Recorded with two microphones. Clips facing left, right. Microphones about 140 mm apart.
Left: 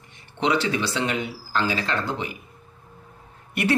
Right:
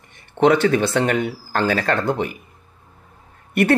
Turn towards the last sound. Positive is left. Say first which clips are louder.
# right 6 dB
turn(degrees=-55)  # may be behind; listen again after turning